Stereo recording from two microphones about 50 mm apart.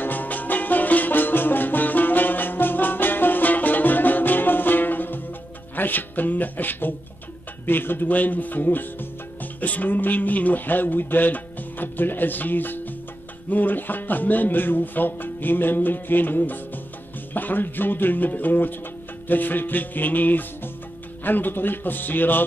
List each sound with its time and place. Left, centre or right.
0.0 s music: left
5.8 s speech: left
9.4 s music: left
13.5 s speech: left